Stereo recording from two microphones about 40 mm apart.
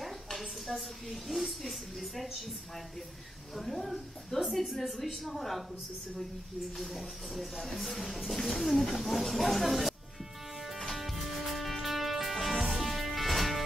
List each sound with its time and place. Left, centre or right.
0.0 s a woman's voice: centre
3.5 s speech: centre
6.8 s speech: centre
10.6 s music: centre